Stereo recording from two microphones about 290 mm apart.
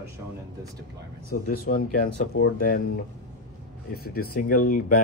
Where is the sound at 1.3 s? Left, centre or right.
Left.